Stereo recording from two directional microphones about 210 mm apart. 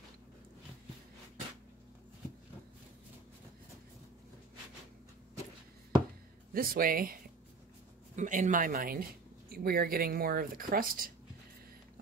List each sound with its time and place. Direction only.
6.5 s speech: 45° right (ahead or behind)
8.2 s speech: 40° right (ahead or behind)